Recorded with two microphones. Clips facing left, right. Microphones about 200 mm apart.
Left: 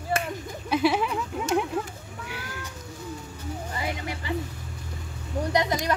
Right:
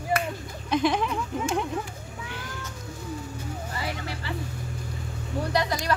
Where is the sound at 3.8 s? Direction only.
20° left (ahead or behind).